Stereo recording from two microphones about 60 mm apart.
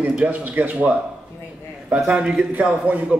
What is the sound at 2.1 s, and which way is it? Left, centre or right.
Speech, right.